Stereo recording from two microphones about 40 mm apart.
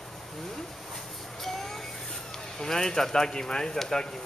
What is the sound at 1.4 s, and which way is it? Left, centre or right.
Vehicle, centre.